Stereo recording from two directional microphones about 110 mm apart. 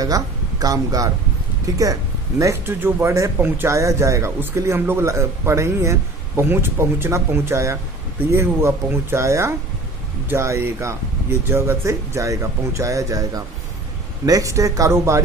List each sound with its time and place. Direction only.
0.0 s speech: 35° right (ahead or behind)